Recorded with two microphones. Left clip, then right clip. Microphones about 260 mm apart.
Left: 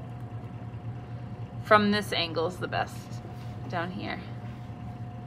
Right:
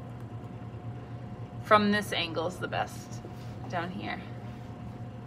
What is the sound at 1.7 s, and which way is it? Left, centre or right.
Speech, centre.